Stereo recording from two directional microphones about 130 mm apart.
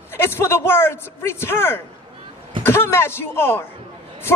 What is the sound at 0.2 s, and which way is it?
Speech, 20° left (ahead or behind).